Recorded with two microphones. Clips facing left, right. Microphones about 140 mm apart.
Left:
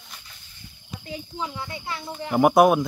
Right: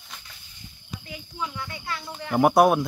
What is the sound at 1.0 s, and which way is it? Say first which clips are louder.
Speech: left 3 dB; 25° left (ahead or behind).